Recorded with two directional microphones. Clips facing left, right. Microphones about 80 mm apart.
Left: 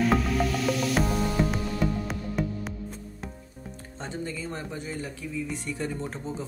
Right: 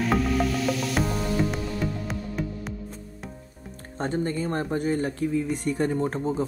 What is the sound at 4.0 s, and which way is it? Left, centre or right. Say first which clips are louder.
Speech: right 8 dB; right.